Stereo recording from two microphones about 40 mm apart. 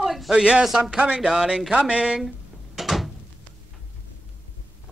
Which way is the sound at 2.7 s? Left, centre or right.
Centre.